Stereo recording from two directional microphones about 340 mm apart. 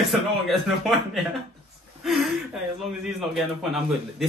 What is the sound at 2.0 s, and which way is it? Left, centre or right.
A man's voice, centre.